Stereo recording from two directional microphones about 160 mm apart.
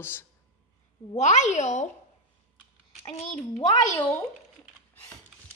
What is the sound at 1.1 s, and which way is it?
Speech, 45° left (ahead or behind).